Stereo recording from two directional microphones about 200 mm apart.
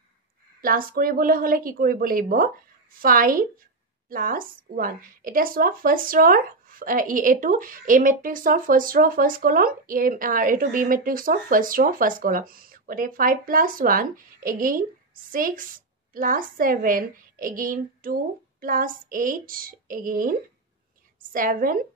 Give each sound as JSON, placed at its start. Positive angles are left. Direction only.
{"t": 0.6, "sound": "a woman's voice", "side_deg": -45}